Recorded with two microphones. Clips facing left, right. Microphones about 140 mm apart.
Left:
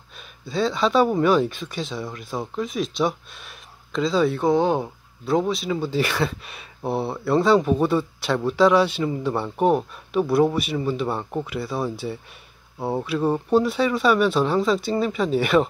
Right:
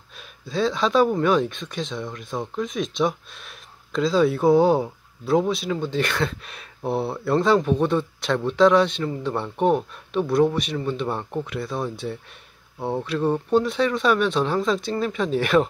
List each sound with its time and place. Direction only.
0.5 s speech: centre (ahead or behind)